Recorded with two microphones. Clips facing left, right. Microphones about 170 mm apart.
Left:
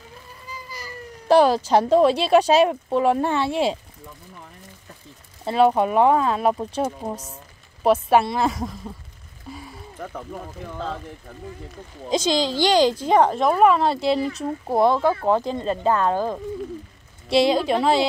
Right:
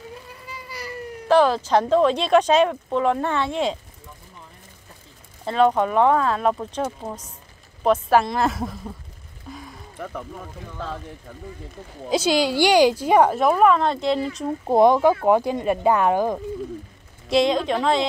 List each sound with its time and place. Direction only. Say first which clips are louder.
1.3 s speech: left 1 dB; 10° left (ahead or behind)
5.4 s speech: left 1 dB; 10° left (ahead or behind)
9.5 s a sound: left 1 dB; 5° left (ahead or behind)
12.1 s speech: right 1 dB; 10° right (ahead or behind)
14.7 s speech: right 3 dB; 15° right (ahead or behind)
17.3 s speech: left 1 dB; 5° left (ahead or behind)